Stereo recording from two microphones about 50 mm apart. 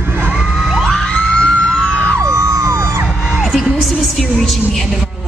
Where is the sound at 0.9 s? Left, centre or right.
Centre.